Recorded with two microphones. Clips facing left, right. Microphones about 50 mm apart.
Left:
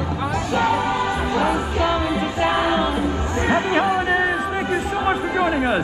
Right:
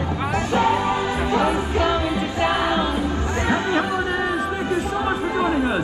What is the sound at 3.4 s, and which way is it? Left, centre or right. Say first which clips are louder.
Chatter: left 3 dB; left.